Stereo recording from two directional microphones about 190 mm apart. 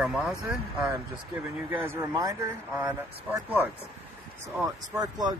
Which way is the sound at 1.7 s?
10° right (ahead or behind).